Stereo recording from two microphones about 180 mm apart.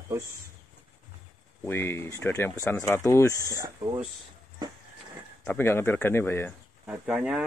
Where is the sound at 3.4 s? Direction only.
20° right (ahead or behind).